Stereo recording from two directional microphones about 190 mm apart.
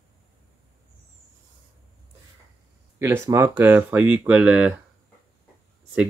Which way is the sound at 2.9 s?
15° right (ahead or behind).